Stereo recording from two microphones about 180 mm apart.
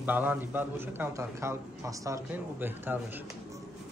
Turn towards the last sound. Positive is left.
turn(degrees=-10)  # may be behind; listen again after turning